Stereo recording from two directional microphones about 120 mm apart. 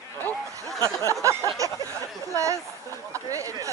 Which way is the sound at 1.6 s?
25° right (ahead or behind).